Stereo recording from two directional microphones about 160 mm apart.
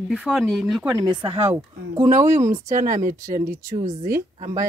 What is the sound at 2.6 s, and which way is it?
Speech, 55° right (ahead or behind).